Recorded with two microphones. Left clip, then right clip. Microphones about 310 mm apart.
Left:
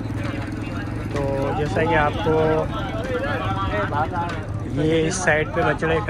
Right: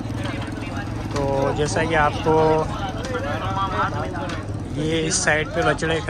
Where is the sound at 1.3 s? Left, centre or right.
Centre.